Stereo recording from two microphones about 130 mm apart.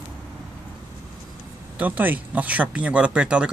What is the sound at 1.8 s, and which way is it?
Speech, 15° right (ahead or behind).